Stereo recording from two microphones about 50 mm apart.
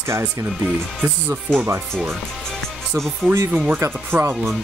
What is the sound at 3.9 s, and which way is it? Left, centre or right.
Speech, right.